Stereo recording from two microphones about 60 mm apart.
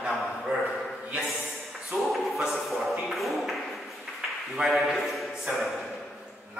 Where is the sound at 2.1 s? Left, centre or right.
Centre.